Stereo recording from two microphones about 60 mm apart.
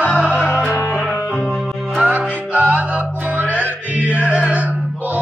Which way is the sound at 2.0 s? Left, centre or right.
Right.